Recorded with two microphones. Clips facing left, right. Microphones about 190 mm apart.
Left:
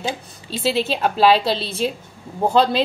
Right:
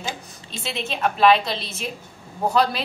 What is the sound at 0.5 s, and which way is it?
A woman's voice, 35° left (ahead or behind).